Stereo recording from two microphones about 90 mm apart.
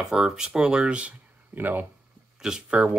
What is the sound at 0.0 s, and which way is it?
Speech, 5° right (ahead or behind).